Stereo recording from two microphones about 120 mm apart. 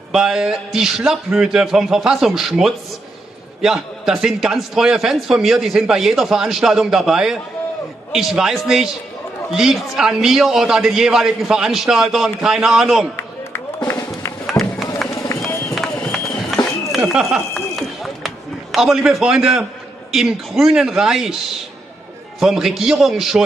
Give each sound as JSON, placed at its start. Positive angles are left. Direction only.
{"t": 0.1, "sound": "a man's voice", "side_deg": -5}
{"t": 13.8, "sound": "music", "side_deg": 25}
{"t": 14.6, "sound": "music", "side_deg": 0}
{"t": 15.7, "sound": "run", "side_deg": 0}
{"t": 16.9, "sound": "speech", "side_deg": -5}
{"t": 17.7, "sound": "a sound", "side_deg": 0}
{"t": 20.1, "sound": "a man's voice", "side_deg": -5}
{"t": 22.4, "sound": "a man's voice", "side_deg": -5}